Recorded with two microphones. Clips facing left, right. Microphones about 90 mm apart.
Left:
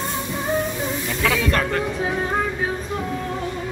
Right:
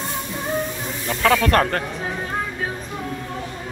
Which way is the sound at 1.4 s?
50° right (ahead or behind).